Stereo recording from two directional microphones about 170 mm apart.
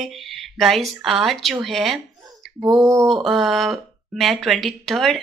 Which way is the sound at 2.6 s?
20° right (ahead or behind).